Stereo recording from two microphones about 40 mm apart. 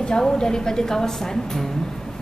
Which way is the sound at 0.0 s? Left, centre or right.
Centre.